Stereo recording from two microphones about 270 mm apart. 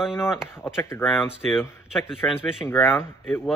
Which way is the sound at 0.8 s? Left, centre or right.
Centre.